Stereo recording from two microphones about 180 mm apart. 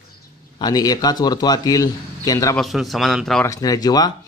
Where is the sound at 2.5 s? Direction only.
Centre (ahead or behind).